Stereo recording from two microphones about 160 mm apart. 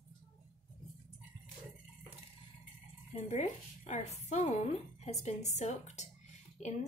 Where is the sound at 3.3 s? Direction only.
45° left (ahead or behind).